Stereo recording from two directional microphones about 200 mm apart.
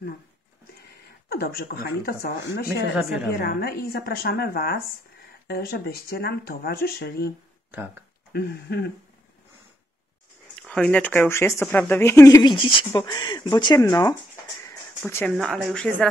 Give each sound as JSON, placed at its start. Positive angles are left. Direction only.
{"t": 1.3, "sound": "speech", "side_deg": 50}
{"t": 8.3, "sound": "speech", "side_deg": 55}
{"t": 10.6, "sound": "speech", "side_deg": 5}
{"t": 14.6, "sound": "music", "side_deg": 15}
{"t": 15.3, "sound": "speech", "side_deg": 0}